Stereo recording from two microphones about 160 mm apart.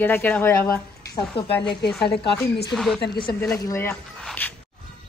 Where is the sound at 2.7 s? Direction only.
Centre (ahead or behind).